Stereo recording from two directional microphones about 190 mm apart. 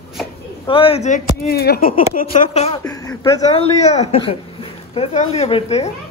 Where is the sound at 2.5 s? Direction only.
30° left (ahead or behind).